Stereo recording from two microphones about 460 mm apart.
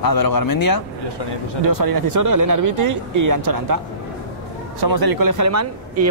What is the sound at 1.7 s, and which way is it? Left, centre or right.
Speech, right.